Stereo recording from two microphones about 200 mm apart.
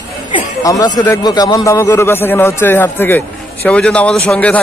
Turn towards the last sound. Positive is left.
turn(degrees=5)  # may be behind; listen again after turning